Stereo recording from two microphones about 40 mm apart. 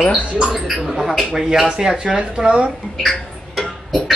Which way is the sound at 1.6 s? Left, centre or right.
Centre.